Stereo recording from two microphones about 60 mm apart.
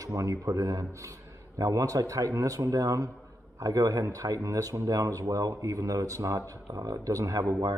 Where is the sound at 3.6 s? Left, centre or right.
Right.